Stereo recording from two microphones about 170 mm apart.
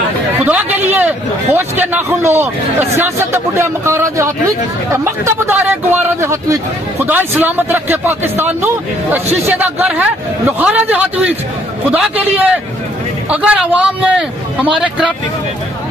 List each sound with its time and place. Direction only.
0.5 s a man's voice: 10° right (ahead or behind)